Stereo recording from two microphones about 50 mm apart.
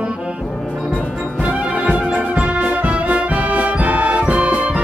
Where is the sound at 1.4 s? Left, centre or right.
Right.